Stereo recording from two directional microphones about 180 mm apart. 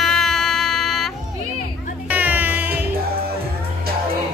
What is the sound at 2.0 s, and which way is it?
Music, 10° right (ahead or behind).